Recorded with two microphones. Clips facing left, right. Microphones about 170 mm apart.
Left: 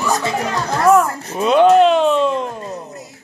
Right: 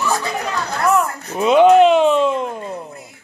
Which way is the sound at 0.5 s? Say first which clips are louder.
Left 5 dB; 35° left (ahead or behind).